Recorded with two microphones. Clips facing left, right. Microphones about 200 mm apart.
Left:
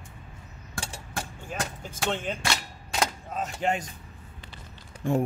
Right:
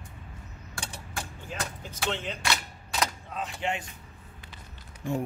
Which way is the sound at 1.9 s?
50° left (ahead or behind).